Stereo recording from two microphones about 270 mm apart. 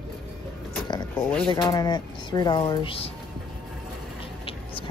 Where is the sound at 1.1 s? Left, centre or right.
Centre; by 3.1 s left.